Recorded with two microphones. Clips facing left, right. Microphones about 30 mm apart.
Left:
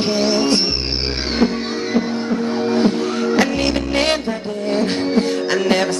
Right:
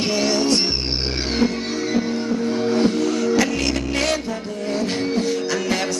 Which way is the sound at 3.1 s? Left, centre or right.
Left.